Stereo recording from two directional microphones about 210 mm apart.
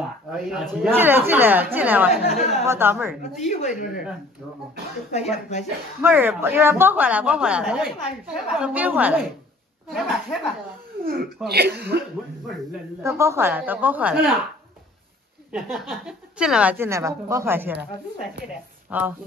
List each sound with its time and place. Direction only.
0.3 s a woman's voice: centre (ahead or behind)
2.2 s a woman's voice: 35° left (ahead or behind)
2.6 s a woman's voice: 10° right (ahead or behind)
3.2 s a woman's voice: 35° left (ahead or behind)
5.1 s a woman's voice: 30° left (ahead or behind)
6.0 s a woman's voice: 10° right (ahead or behind)
11.4 s speech: 50° right (ahead or behind)
13.0 s a woman's voice: 15° right (ahead or behind)
15.5 s a woman's voice: centre (ahead or behind)
18.9 s speech: 10° right (ahead or behind)